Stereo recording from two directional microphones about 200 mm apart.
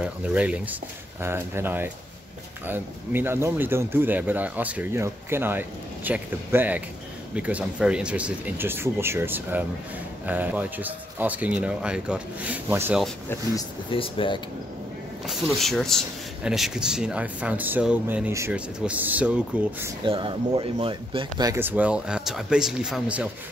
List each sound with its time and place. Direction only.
0.0 s speech: 5° right (ahead or behind)
13.6 s speech: 25° left (ahead or behind)
15.2 s speech: centre (ahead or behind)
20.1 s speech: 25° right (ahead or behind); by 23.2 s 5° right (ahead or behind)